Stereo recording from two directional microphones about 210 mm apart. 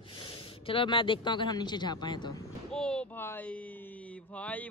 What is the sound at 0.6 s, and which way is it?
Speech, 25° left (ahead or behind).